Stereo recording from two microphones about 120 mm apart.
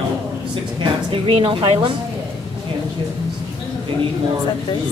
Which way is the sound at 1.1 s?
50° right (ahead or behind).